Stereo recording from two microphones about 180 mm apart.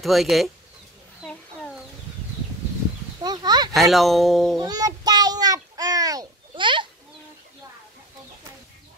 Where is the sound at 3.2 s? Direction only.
25° right (ahead or behind).